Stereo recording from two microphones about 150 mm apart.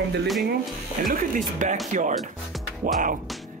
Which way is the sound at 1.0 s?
65° right (ahead or behind).